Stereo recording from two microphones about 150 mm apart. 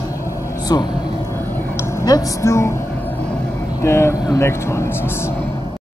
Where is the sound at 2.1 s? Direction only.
20° left (ahead or behind).